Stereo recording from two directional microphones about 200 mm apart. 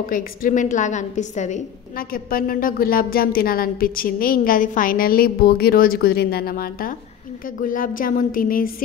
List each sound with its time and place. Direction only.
0.1 s a woman's voice: 40° left (ahead or behind)